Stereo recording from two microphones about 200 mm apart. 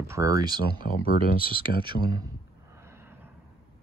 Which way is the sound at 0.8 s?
45° left (ahead or behind).